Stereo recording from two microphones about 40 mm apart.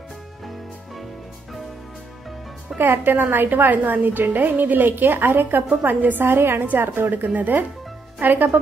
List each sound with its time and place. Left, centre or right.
2.8 s a woman's voice: right
5.8 s a woman's voice: right
6.2 s a woman's voice: right
7.0 s a woman's voice: right
7.3 s a woman's voice: right